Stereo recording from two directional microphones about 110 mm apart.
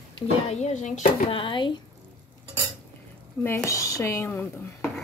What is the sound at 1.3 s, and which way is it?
Speech, 50° left (ahead or behind).